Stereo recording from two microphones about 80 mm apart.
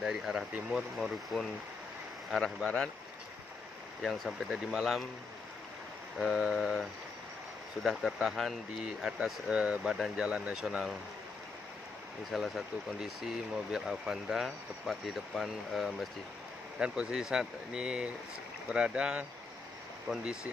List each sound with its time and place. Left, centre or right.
0.0 s speech: centre
4.0 s speech: centre
6.1 s speech: centre
12.3 s speech: centre
20.1 s speech: right